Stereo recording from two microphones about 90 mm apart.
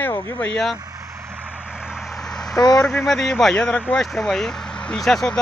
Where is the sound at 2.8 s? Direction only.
10° left (ahead or behind).